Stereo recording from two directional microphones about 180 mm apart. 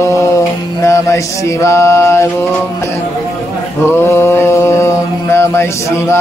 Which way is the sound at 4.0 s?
15° left (ahead or behind).